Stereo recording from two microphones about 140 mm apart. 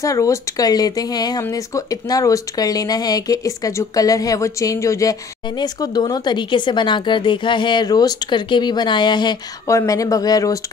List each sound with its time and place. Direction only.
0.0 s speech: 20° left (ahead or behind)